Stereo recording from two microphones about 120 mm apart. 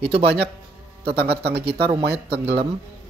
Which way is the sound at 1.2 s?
50° right (ahead or behind).